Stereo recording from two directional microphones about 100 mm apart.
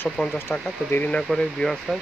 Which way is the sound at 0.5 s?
20° left (ahead or behind).